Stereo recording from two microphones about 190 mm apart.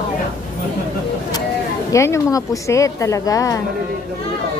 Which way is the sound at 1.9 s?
15° left (ahead or behind).